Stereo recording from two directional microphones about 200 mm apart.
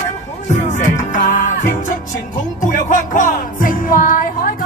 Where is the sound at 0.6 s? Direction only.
40° left (ahead or behind).